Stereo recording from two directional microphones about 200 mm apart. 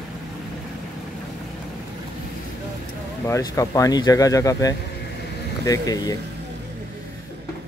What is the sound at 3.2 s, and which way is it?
Speech, 15° left (ahead or behind).